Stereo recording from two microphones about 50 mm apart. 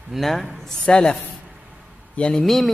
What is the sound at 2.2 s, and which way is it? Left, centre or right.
Speech, left.